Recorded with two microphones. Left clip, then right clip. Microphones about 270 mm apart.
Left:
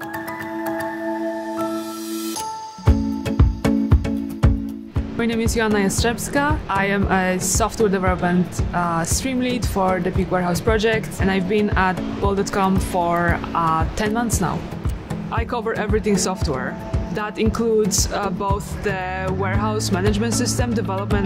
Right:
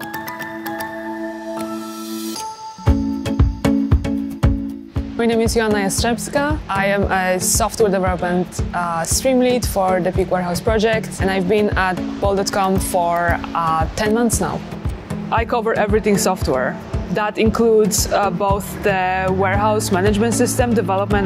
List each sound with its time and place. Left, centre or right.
2.8 s music: centre
5.1 s speech: left
15.3 s speech: left